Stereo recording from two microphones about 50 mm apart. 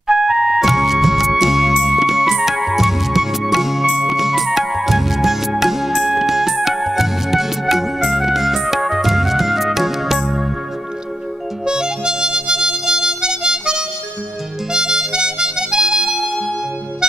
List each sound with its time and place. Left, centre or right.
0.1 s music: centre
11.6 s harmonica: centre
16.0 s music: centre